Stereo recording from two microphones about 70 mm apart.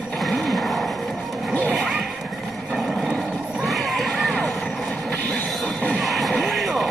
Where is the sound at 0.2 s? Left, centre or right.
Centre.